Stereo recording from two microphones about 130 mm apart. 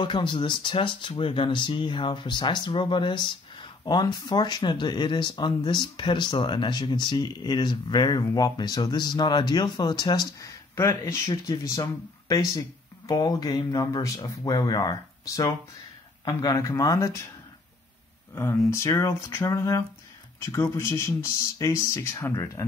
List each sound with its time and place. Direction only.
0.0 s speech: 40° left (ahead or behind)
10.8 s speech: 20° left (ahead or behind)
18.3 s speech: 20° left (ahead or behind)